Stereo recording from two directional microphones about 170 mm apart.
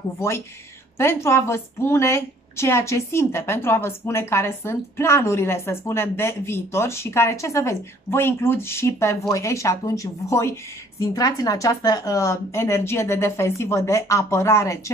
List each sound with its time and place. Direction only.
0.9 s a woman's voice: 15° left (ahead or behind)